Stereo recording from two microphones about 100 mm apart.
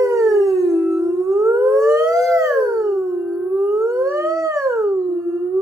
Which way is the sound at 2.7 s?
35° right (ahead or behind).